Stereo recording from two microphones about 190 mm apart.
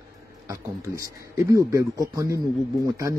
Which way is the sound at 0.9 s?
15° right (ahead or behind).